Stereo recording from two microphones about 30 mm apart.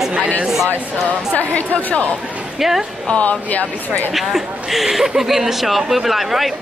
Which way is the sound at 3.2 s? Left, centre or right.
Left.